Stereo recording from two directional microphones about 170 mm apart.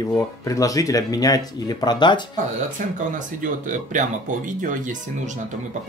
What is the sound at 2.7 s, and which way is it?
Speech, 50° right (ahead or behind).